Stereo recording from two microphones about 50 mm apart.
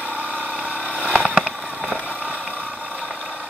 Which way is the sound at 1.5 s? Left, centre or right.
Centre.